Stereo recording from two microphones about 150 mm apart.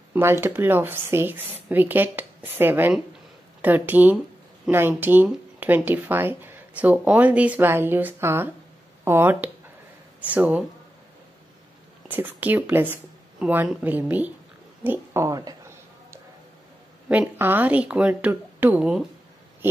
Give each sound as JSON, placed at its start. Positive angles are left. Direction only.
{"t": 0.1, "sound": "speech", "side_deg": -15}
{"t": 12.1, "sound": "speech", "side_deg": -10}
{"t": 14.8, "sound": "a sound", "side_deg": -15}
{"t": 17.1, "sound": "speech", "side_deg": -10}